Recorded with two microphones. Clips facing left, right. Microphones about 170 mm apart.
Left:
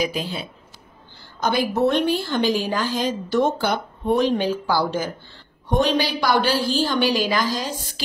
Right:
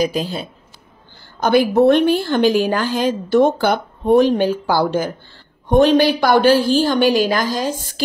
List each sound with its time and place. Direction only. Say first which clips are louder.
0.0 s speech: right 5 dB; 40° right (ahead or behind)
1.4 s a woman's voice: right 7 dB; 60° right (ahead or behind)